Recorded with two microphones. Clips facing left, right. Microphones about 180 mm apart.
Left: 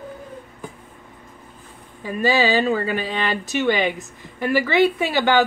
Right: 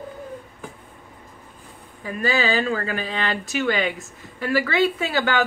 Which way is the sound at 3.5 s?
20° left (ahead or behind).